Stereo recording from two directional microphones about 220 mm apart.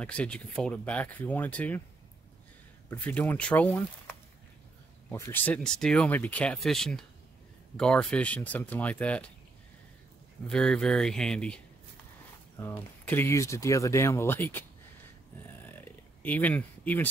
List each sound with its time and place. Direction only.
0.0 s speech: 5° left (ahead or behind)
2.9 s speech: 10° left (ahead or behind)
10.5 s speech: 5° left (ahead or behind)
15.7 s a sound: 10° left (ahead or behind)